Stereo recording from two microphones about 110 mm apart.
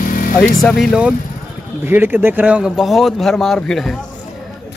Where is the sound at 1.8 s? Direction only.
20° right (ahead or behind).